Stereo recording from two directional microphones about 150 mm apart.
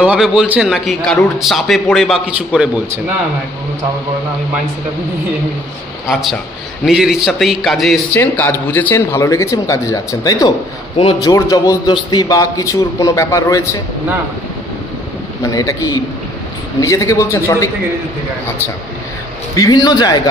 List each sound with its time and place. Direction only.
0.0 s a man's voice: 5° right (ahead or behind)
6.9 s a man's voice: 5° right (ahead or behind)
8.1 s a man's voice: 15° left (ahead or behind)
15.4 s a man's voice: 20° left (ahead or behind)
19.5 s a man's voice: 25° left (ahead or behind)